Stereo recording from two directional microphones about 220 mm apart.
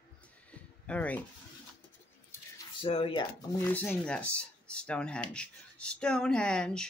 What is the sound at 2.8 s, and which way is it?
Speech, 25° left (ahead or behind).